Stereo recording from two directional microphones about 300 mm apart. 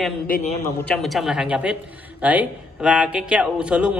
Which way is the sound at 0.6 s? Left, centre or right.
Centre.